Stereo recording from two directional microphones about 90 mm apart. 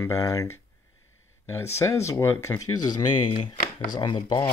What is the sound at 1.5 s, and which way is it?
Speech, 30° left (ahead or behind).